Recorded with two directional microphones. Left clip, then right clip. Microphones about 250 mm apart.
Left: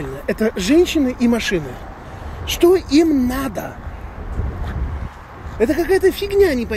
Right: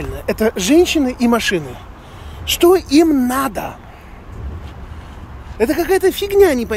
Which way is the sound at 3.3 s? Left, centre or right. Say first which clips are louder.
Right 5 dB; centre.